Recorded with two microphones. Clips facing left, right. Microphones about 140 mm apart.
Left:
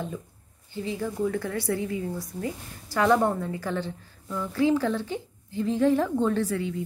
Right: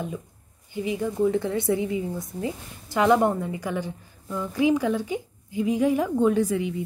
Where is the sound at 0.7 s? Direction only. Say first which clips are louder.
Right 3 dB; 15° right (ahead or behind).